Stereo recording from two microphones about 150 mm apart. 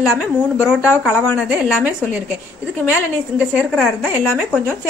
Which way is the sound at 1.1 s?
15° left (ahead or behind).